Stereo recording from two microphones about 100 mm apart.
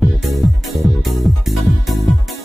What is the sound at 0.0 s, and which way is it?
Music, centre (ahead or behind).